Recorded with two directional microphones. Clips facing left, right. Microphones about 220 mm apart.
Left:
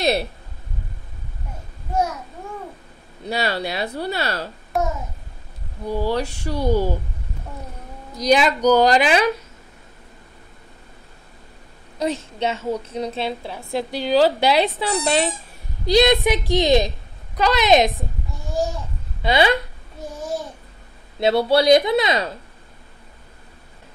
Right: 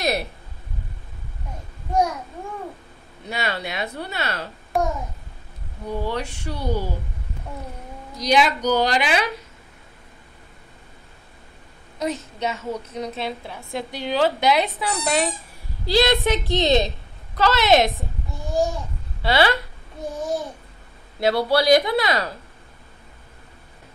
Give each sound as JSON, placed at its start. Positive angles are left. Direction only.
{"t": 0.0, "sound": "speech", "side_deg": 30}
{"t": 3.3, "sound": "a woman's voice", "side_deg": 35}
{"t": 4.7, "sound": "a child's voice", "side_deg": 0}
{"t": 5.9, "sound": "a woman's voice", "side_deg": 35}
{"t": 8.3, "sound": "a woman's voice", "side_deg": 40}
{"t": 12.0, "sound": "a woman's voice", "side_deg": 30}
{"t": 15.8, "sound": "a woman's voice", "side_deg": 20}
{"t": 18.3, "sound": "babbling", "side_deg": 0}
{"t": 19.2, "sound": "speech", "side_deg": 20}
{"t": 20.0, "sound": "a child's voice", "side_deg": 0}
{"t": 21.2, "sound": "speech", "side_deg": 25}